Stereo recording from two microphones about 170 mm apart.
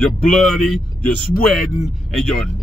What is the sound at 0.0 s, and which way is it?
Speech, 5° left (ahead or behind).